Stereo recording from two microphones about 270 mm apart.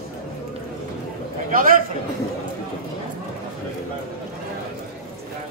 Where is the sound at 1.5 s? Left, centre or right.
Right.